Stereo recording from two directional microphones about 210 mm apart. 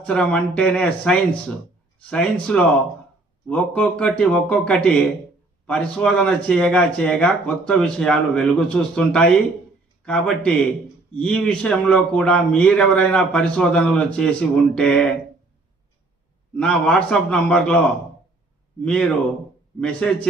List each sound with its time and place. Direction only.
0.0 s a man's voice: 5° left (ahead or behind)
16.5 s a man's voice: 5° left (ahead or behind)